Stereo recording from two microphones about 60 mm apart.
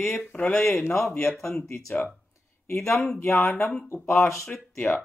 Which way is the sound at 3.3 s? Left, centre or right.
Left.